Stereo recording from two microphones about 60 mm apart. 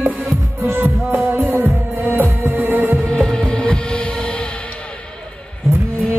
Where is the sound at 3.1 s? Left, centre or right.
Centre.